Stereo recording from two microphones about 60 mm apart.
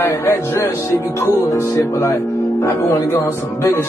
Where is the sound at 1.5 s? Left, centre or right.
Left.